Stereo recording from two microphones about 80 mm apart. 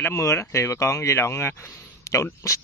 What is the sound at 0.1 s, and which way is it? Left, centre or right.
Speech, left.